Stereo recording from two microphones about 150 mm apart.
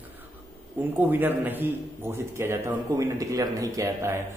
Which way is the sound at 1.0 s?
15° right (ahead or behind).